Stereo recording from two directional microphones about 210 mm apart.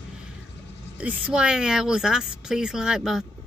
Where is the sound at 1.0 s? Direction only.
5° right (ahead or behind).